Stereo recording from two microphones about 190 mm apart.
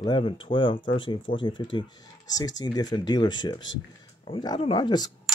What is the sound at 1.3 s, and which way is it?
Speech, 45° left (ahead or behind).